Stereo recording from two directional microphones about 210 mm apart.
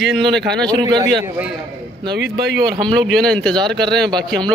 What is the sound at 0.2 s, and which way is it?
Speech, 55° right (ahead or behind).